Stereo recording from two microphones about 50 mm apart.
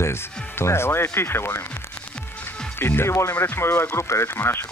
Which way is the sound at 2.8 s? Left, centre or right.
Left.